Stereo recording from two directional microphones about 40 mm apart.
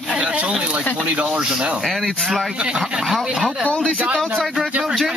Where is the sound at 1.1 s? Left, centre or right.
Right.